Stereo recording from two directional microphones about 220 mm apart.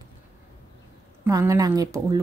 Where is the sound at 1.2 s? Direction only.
15° right (ahead or behind).